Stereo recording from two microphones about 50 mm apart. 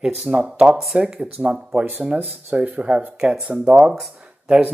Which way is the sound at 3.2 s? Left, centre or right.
Centre.